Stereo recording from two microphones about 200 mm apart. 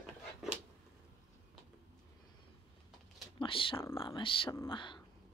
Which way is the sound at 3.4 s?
25° left (ahead or behind).